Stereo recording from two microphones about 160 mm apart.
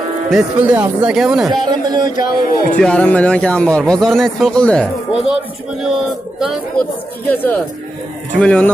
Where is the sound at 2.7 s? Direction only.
5° left (ahead or behind).